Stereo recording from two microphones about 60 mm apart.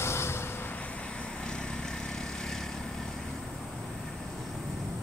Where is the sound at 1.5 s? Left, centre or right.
Centre.